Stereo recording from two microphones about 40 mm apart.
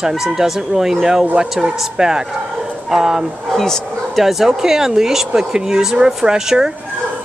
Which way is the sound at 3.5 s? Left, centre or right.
Centre.